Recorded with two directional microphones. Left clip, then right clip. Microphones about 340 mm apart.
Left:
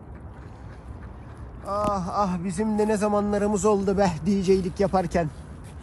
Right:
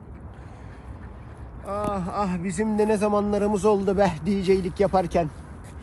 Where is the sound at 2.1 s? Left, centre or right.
Centre.